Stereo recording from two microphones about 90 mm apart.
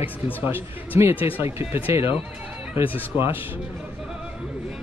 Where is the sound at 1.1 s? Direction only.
80° left.